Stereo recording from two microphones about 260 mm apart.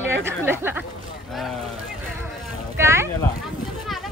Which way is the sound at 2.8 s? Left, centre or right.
Centre.